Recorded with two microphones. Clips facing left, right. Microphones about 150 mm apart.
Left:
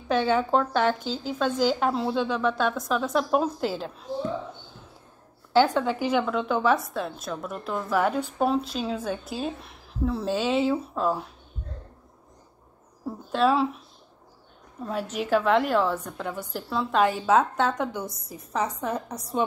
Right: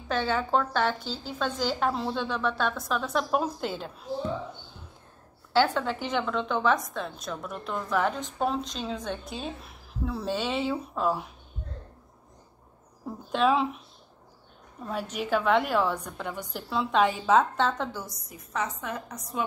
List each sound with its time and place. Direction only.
0.1 s a woman's voice: 10° left (ahead or behind)
5.5 s a woman's voice: 10° left (ahead or behind)
13.0 s a woman's voice: 5° left (ahead or behind)
15.2 s a woman's voice: centre (ahead or behind)
18.0 s a woman's voice: 30° left (ahead or behind)